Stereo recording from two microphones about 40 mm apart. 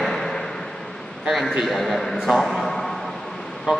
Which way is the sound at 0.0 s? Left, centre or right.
Centre.